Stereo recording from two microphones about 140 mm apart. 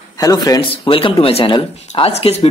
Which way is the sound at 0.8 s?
40° left (ahead or behind).